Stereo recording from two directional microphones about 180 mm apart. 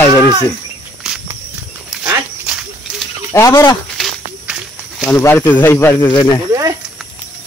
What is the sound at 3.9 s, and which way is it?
Snake, centre (ahead or behind).